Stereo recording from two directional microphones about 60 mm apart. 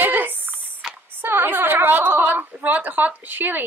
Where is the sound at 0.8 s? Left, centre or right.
Centre.